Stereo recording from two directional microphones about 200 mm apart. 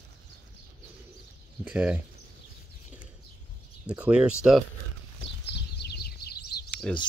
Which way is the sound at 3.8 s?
5° right (ahead or behind).